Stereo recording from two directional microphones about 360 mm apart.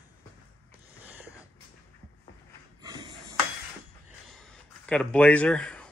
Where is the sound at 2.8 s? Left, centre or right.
Centre.